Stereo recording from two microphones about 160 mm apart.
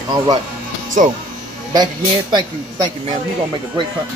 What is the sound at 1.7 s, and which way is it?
Speech, 25° right (ahead or behind).